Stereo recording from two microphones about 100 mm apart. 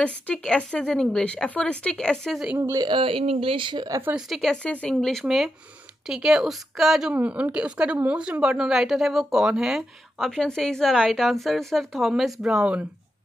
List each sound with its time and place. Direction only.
0.0 s speech: 10° left (ahead or behind)
2.6 s speech: 35° right (ahead or behind)
2.9 s speech: 60° right (ahead or behind)
4.1 s speech: centre (ahead or behind)
6.0 s speech: 5° right (ahead or behind)
7.2 s speech: 15° right (ahead or behind)